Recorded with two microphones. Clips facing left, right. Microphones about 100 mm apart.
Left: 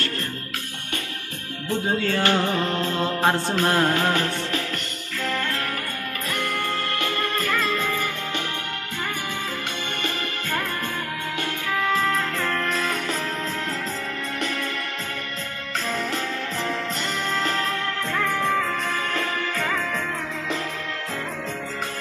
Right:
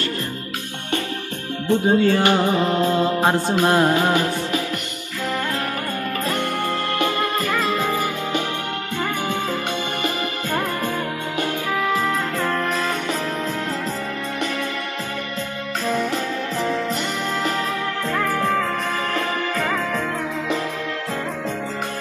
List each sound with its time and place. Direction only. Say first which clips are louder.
1.7 s music: right 7 dB; 20° right (ahead or behind)
7.3 s music: right 3 dB; 5° right (ahead or behind)
11.8 s music: even; 15° right (ahead or behind)
18.1 s music: right 2 dB; 5° right (ahead or behind)